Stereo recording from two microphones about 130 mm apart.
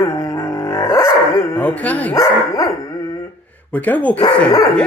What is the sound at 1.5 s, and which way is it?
Speech, 10° left (ahead or behind).